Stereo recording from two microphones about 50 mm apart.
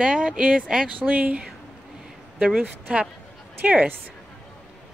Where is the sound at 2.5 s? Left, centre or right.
Right.